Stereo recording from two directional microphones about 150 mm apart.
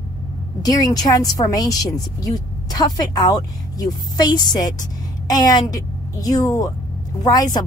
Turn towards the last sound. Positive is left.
turn(degrees=25)  # may be behind; listen again after turning